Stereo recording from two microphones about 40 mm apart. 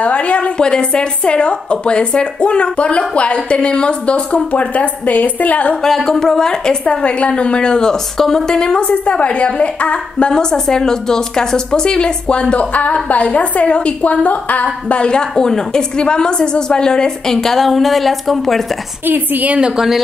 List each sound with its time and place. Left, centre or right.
0.0 s a sound: left
0.6 s a woman's voice: left
5.8 s a woman's voice: centre
6.9 s a woman's voice: left
8.8 s a woman's voice: left
15.0 s a woman's voice: centre
19.0 s a woman's voice: right